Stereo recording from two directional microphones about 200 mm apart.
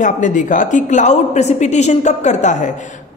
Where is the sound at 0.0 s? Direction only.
40° left (ahead or behind).